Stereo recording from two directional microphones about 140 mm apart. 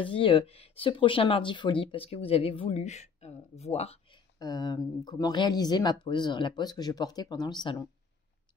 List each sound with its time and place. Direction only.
0.0 s speech: 40° left (ahead or behind)
4.4 s speech: 30° left (ahead or behind)